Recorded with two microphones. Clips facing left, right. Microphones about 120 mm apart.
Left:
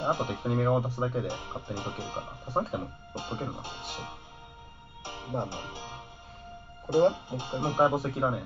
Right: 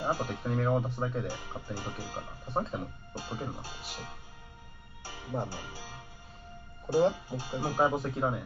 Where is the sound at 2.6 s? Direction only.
10° left (ahead or behind).